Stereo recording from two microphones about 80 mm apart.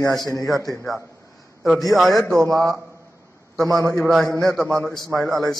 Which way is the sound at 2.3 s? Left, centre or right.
Right.